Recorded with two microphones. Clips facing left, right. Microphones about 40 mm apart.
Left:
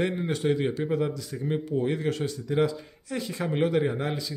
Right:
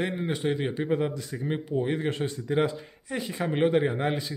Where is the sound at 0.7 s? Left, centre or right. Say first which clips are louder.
Even; right.